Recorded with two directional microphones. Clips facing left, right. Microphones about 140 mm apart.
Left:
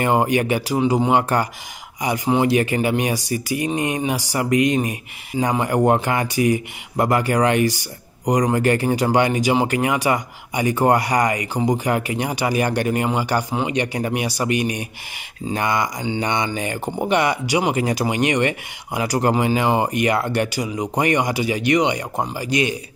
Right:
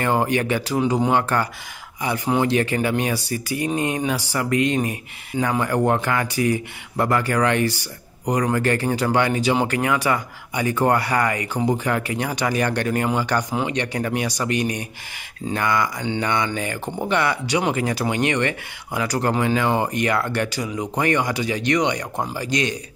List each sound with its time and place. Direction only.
0.0 s speech: 15° left (ahead or behind)